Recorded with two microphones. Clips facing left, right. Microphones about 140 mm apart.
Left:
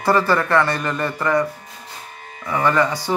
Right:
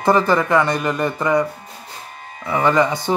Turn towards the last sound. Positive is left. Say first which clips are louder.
# right 2 dB
turn(degrees=-20)  # may be behind; listen again after turning